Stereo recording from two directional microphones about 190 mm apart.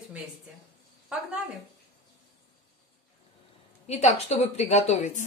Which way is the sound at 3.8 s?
35° left (ahead or behind).